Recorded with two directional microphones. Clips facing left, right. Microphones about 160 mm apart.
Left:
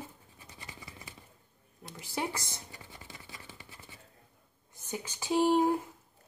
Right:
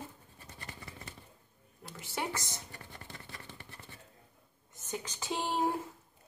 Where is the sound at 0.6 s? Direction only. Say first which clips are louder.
Right 1 dB; 10° left (ahead or behind).